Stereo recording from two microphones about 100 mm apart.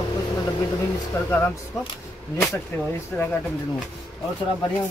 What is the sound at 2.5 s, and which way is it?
Speech, 20° left (ahead or behind).